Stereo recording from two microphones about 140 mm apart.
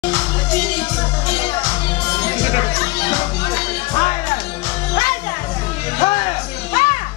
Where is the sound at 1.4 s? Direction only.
35° left (ahead or behind).